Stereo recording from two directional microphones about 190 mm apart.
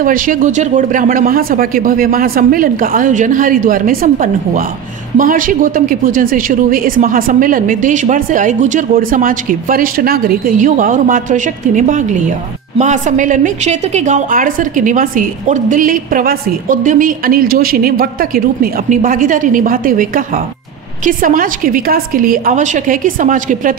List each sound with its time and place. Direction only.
0.0 s a woman's voice: 45° right (ahead or behind)